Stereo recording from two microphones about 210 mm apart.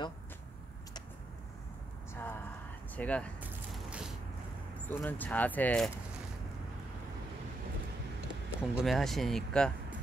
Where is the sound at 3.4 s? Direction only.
5° right (ahead or behind).